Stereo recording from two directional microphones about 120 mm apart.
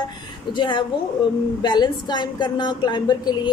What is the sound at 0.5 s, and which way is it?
A woman's voice, 40° left (ahead or behind).